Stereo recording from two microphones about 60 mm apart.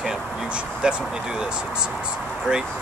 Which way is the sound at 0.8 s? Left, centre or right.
Centre.